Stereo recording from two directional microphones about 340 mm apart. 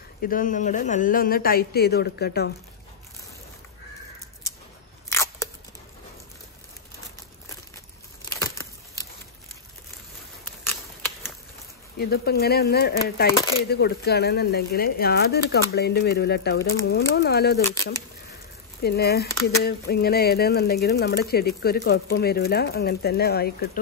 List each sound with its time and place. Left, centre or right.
0.2 s speech: left
5.1 s crunch: centre
12.0 s speech: left
18.8 s speech: left